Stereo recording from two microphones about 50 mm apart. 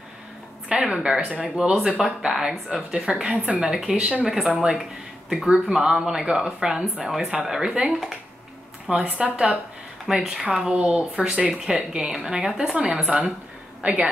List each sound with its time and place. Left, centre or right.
0.7 s speech: centre
3.9 s speech: right
4.6 s speech: centre
10.1 s speech: centre
13.8 s a woman's voice: right